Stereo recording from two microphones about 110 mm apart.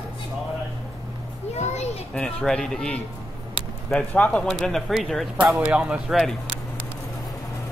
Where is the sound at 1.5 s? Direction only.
85° left.